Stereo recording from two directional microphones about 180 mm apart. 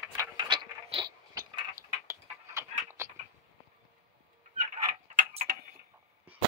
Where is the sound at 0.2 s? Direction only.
25° right (ahead or behind).